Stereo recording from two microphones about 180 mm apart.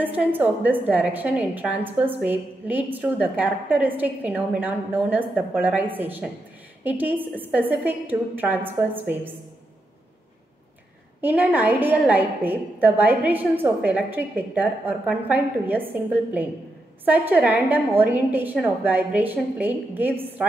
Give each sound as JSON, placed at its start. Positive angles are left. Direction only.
{"t": 0.0, "sound": "a woman's voice", "side_deg": -10}
{"t": 11.1, "sound": "a woman's voice", "side_deg": -10}